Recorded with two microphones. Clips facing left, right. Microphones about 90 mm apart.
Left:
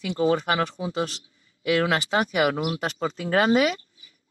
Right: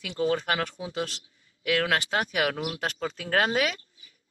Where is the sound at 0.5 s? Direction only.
30° left (ahead or behind).